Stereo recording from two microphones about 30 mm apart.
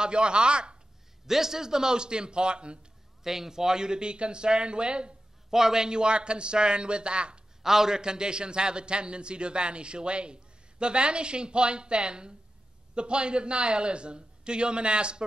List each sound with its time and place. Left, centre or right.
0.0 s speech: right
1.2 s a man's voice: centre; by 2.8 s right
3.3 s a man's voice: centre; by 5.1 s right
5.5 s a man's voice: centre
5.9 s a man's voice: right
7.6 s a man's voice: centre; by 15.2 s right